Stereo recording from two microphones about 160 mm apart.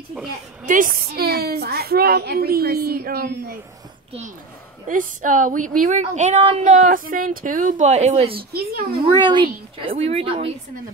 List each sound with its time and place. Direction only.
0.7 s a woman's voice: 55° right (ahead or behind); by 3.5 s 75° right (ahead or behind)
4.8 s speech: 55° right (ahead or behind)
9.0 s a woman's voice: 30° right (ahead or behind)